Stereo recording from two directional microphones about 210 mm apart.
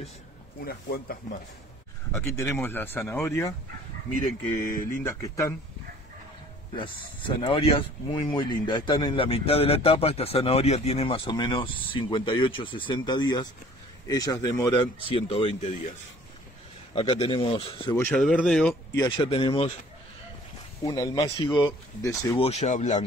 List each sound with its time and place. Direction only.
0.7 s speech: 45° left (ahead or behind)
2.1 s speech: 10° left (ahead or behind)
4.6 s speech: 10° left (ahead or behind)
6.7 s speech: 25° left (ahead or behind)
16.9 s speech: 25° left (ahead or behind)
17.9 s speech: 10° left (ahead or behind)
18.9 s speech: 25° left (ahead or behind)
20.8 s speech: 20° left (ahead or behind)
22.4 s speech: 30° left (ahead or behind)